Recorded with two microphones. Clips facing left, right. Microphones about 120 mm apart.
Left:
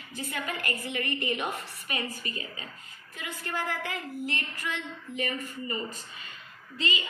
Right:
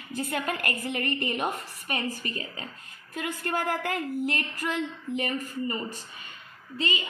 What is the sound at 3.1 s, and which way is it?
A woman's voice, 50° right (ahead or behind).